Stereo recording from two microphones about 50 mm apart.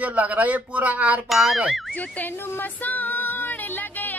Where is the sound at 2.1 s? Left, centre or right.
Left.